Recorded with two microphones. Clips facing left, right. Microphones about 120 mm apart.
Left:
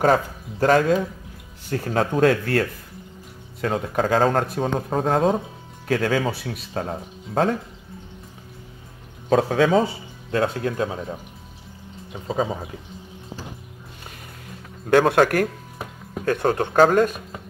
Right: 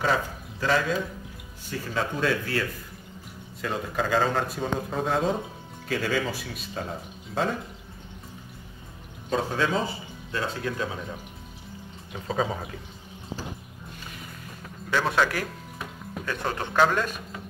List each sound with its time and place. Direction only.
0.0 s speech: 50° left (ahead or behind)
3.6 s speech: 50° left (ahead or behind)
9.3 s speech: 70° left (ahead or behind)
10.6 s speech: 40° left (ahead or behind)
12.3 s speech: 5° left (ahead or behind)
14.9 s speech: 55° left (ahead or behind)